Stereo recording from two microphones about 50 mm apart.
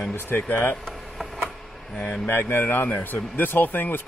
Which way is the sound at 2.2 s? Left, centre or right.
Left.